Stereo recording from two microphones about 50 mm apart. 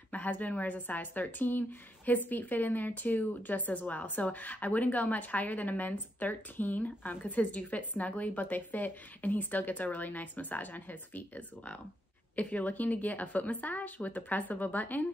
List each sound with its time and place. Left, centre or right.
0.1 s a woman's voice: left